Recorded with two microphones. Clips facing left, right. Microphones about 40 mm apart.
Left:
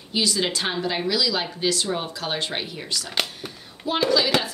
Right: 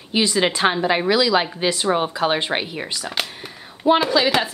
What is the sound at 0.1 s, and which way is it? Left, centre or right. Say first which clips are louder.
Speech: right 5 dB; right.